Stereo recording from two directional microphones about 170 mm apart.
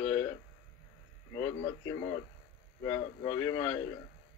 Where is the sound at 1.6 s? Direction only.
25° left (ahead or behind).